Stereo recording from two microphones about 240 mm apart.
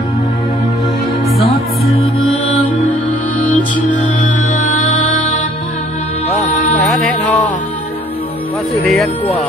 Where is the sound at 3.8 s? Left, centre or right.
Left.